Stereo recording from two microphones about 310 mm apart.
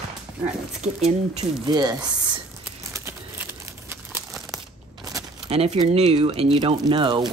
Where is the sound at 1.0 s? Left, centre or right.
Centre.